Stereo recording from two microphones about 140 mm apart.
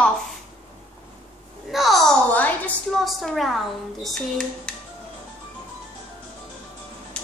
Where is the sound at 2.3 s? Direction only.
10° left (ahead or behind).